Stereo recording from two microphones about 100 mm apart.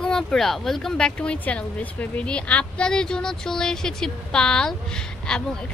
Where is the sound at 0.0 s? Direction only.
5° left (ahead or behind).